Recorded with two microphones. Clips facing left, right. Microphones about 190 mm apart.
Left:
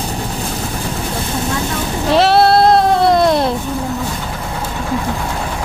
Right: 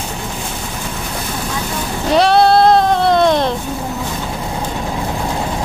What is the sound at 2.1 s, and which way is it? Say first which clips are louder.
Sheep: even; 5° left (ahead or behind).